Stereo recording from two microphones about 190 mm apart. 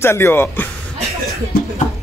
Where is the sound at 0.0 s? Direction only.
15° left (ahead or behind).